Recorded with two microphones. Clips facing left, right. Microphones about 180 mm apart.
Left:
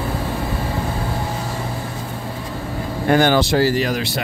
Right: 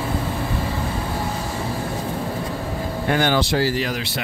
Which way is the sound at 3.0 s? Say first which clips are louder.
Left 5 dB; 45° left (ahead or behind).